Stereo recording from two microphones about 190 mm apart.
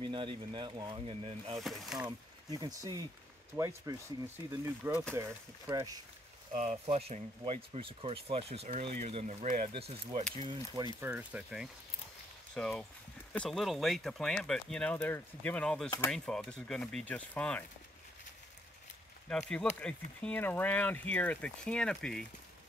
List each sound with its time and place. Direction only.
0.0 s speech: 25° right (ahead or behind)
1.6 s speech: centre (ahead or behind)
2.0 s speech: 20° right (ahead or behind)
6.5 s speech: 35° right (ahead or behind)
11.0 s speech: 5° right (ahead or behind)
19.2 s speech: 5° left (ahead or behind)